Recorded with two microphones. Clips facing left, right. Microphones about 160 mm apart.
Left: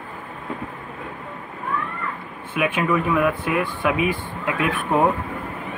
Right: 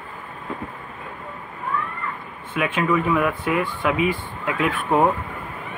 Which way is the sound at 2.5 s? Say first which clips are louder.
Even; 15° left (ahead or behind).